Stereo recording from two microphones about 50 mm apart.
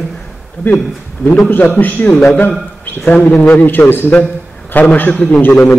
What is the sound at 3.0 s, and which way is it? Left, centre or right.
Speech, left.